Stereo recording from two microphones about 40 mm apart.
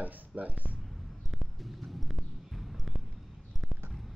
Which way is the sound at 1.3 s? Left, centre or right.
Centre.